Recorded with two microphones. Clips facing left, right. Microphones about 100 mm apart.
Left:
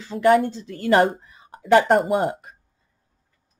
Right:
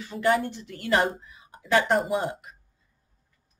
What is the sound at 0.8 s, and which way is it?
Speech, 40° left (ahead or behind).